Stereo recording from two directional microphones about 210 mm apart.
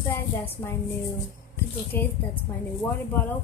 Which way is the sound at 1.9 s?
10° left (ahead or behind).